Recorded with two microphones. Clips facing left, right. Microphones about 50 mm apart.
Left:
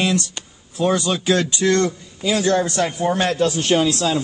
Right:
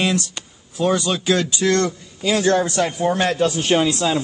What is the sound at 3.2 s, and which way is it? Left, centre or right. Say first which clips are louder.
A man's voice: even; centre.